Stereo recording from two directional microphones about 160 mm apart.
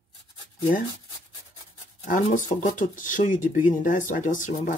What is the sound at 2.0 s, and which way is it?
Speech, 55° left (ahead or behind).